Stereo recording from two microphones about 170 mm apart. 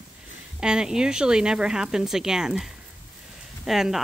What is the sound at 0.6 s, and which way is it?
Speech, 5° right (ahead or behind).